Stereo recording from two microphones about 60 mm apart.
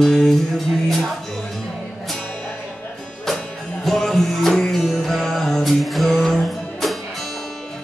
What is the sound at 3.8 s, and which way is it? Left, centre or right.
Music, centre.